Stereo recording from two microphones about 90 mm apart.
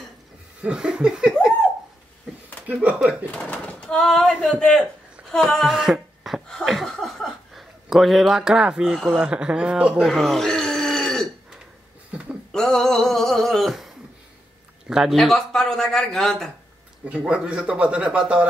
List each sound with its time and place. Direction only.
0.6 s speech: 10° right (ahead or behind)
2.6 s speech: 15° right (ahead or behind)
3.4 s pigeon: 20° left (ahead or behind)
4.0 s a sound: 5° left (ahead or behind)
9.3 s speech: 10° right (ahead or behind)
9.9 s burping: 5° left (ahead or behind)
12.5 s a sound: 5° left (ahead or behind)
14.9 s a man's voice: 5° right (ahead or behind)
17.0 s speech: 15° right (ahead or behind)